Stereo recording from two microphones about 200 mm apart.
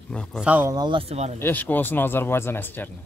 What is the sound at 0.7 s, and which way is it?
Speech, 25° right (ahead or behind).